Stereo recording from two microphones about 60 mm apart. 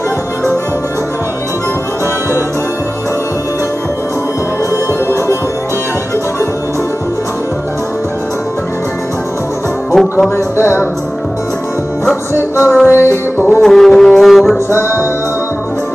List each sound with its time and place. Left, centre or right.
5.0 s music: left
10.3 s speech: left
12.4 s speech: left
12.8 s music: left
13.6 s music: centre
14.7 s speech: left